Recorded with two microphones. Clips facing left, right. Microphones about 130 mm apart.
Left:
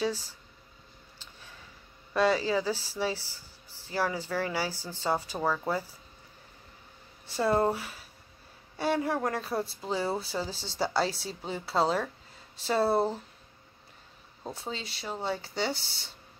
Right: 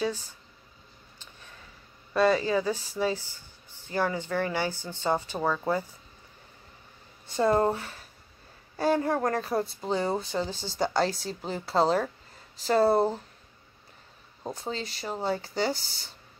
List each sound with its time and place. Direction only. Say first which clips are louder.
0.0 s speech: right 1 dB; 10° left (ahead or behind)
2.1 s speech: right 2 dB; 10° left (ahead or behind)
3.2 s a sound: right 1 dB; 90° left
3.9 s speech: right 2 dB; 5° left (ahead or behind)
7.2 s speech: right 2 dB; 5° left (ahead or behind)
14.5 s speech: right 4 dB; 5° left (ahead or behind)